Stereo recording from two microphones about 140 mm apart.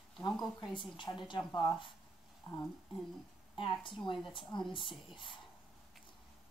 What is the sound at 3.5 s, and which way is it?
A woman's voice, 35° left (ahead or behind).